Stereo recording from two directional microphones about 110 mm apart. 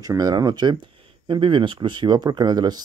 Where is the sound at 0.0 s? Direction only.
35° right (ahead or behind).